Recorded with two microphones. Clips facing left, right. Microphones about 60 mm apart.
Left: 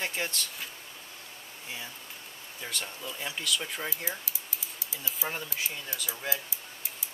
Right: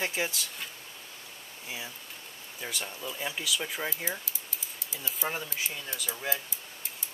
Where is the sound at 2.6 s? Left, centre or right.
Centre.